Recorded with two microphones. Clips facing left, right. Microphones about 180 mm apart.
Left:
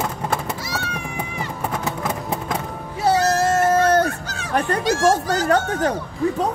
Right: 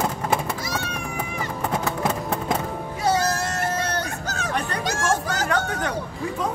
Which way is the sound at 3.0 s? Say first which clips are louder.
Left 5 dB; 40° left (ahead or behind).